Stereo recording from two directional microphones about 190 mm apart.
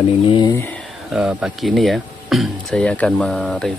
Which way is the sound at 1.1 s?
5° right (ahead or behind).